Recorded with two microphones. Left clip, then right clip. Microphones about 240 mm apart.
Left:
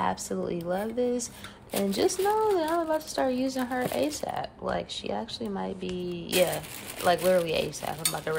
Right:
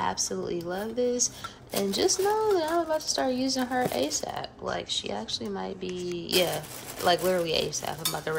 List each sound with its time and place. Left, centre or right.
0.0 s speech: centre